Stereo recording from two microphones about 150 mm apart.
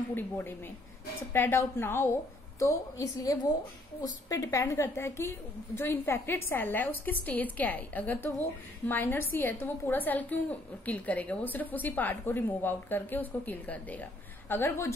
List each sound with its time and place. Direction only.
0.1 s a woman's voice: 15° left (ahead or behind)